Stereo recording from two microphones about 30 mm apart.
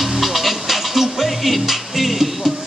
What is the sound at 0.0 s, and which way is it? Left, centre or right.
Music, centre.